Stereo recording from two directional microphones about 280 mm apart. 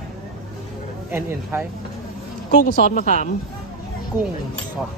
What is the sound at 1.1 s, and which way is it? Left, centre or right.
Speech, centre.